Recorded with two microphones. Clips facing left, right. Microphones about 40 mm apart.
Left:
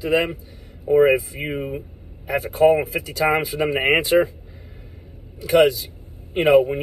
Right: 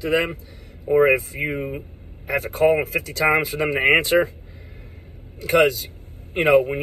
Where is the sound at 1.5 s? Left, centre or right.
Centre.